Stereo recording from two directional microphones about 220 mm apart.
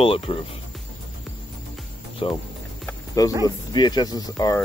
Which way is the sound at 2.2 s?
25° left (ahead or behind).